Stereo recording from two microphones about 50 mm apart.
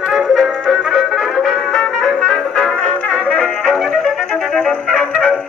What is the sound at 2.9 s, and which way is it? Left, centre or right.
Music, left.